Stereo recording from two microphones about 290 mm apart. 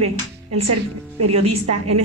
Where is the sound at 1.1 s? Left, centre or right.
Right.